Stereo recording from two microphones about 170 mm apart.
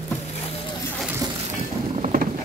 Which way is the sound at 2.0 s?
50° right (ahead or behind).